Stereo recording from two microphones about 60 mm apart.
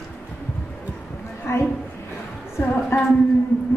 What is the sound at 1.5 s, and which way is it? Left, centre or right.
Speech, left.